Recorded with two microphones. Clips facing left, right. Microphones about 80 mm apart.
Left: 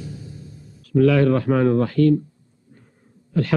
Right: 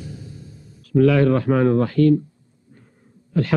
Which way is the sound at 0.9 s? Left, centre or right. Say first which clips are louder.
Right 1 dB; right.